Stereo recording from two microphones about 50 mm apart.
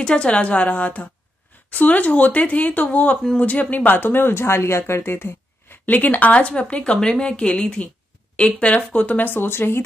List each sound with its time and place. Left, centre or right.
0.0 s a woman's voice: centre; by 5.8 s left
5.9 s a woman's voice: left